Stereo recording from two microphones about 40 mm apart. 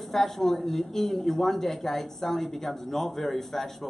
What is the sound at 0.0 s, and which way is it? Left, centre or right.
Speech, centre.